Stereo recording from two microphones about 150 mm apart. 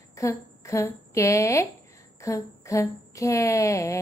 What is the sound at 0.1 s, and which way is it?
A woman's voice, 20° left (ahead or behind).